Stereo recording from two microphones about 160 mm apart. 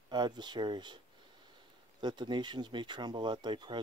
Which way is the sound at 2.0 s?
30° right (ahead or behind).